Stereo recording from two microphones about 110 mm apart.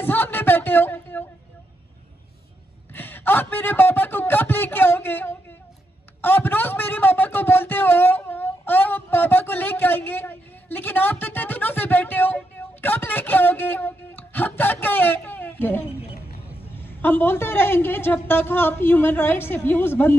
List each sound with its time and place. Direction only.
0.0 s a sound: 20° left (ahead or behind)
2.9 s a woman's voice: 20° left (ahead or behind)
17.0 s a woman's voice: 20° left (ahead or behind)